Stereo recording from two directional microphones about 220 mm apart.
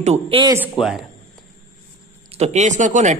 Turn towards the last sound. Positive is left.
turn(degrees=-35)  # may be behind; listen again after turning